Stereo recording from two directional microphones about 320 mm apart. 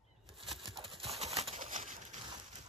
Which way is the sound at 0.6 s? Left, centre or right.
Centre.